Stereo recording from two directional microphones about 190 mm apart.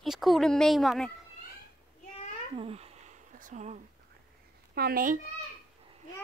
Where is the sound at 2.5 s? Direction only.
30° right (ahead or behind).